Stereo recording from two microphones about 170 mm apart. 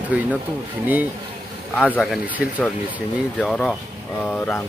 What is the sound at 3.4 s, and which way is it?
Speech, 5° left (ahead or behind).